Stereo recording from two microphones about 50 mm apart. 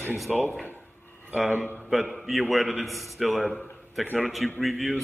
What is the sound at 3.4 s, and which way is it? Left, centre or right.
Speech, left.